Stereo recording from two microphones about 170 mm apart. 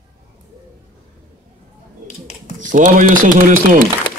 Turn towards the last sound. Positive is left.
turn(degrees=-50)  # may be behind; listen again after turning